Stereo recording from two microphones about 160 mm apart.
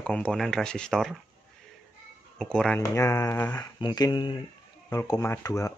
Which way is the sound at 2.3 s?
5° left (ahead or behind).